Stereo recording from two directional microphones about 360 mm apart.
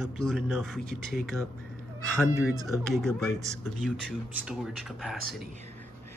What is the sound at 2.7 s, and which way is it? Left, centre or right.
Mantra, centre.